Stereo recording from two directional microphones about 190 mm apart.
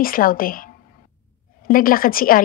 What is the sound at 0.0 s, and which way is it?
A woman's voice, 50° left (ahead or behind).